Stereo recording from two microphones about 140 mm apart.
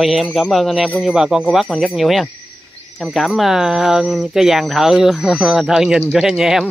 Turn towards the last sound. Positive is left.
turn(degrees=-5)  # may be behind; listen again after turning